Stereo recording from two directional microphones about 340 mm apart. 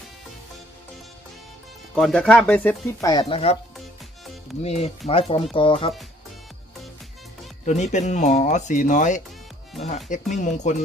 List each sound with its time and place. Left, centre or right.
2.0 s speech: centre
4.6 s speech: centre
7.6 s speech: left